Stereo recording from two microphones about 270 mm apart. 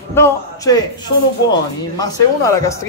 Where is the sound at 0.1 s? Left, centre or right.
Centre.